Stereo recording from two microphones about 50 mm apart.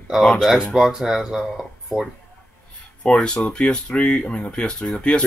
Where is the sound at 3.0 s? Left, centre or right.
Centre.